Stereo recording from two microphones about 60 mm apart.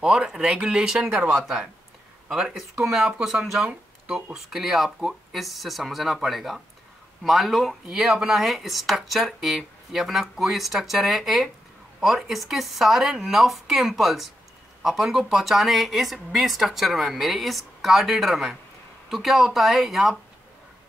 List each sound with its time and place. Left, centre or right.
0.0 s speech: centre
1.0 s speech: right
1.3 s speech: centre